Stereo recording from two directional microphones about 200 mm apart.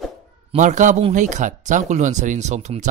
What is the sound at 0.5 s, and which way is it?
A woman's voice, 40° right (ahead or behind).